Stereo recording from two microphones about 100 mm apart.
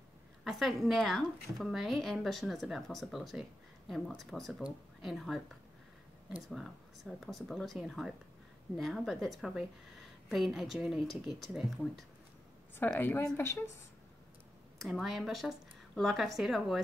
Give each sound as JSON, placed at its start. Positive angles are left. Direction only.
{"t": 0.4, "sound": "a woman's voice", "side_deg": 0}
{"t": 7.3, "sound": "a woman's voice", "side_deg": 0}
{"t": 12.8, "sound": "speech", "side_deg": 20}
{"t": 14.8, "sound": "a woman's voice", "side_deg": 0}